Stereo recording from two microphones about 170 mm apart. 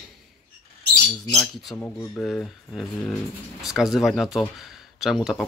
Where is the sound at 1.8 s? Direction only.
10° left (ahead or behind).